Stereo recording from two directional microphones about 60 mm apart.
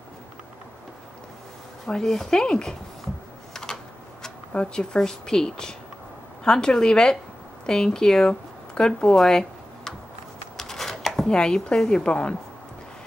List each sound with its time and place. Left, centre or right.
1.9 s a woman's voice: centre
3.6 s typewriter: centre
4.2 s a woman's voice: centre
10.6 s shuffling cards: centre
11.3 s a woman's voice: centre